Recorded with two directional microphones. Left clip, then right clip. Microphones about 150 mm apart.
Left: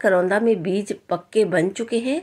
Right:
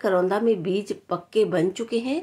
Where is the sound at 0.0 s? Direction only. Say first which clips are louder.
Left 4 dB; 20° left (ahead or behind).